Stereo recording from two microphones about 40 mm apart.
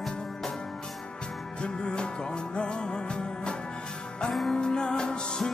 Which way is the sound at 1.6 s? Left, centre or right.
Left.